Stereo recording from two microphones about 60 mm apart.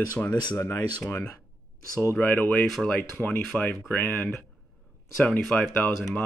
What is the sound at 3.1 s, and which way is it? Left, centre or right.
Speech, left.